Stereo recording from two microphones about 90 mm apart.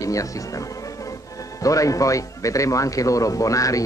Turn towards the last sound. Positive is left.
turn(degrees=40)  # may be behind; listen again after turning